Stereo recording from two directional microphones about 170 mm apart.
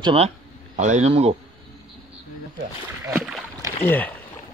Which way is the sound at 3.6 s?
10° left (ahead or behind).